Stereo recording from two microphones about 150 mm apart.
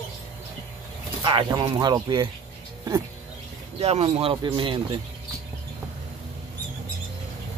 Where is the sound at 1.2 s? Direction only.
30° right (ahead or behind).